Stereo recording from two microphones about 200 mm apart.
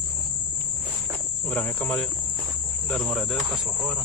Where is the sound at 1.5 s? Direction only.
5° left (ahead or behind).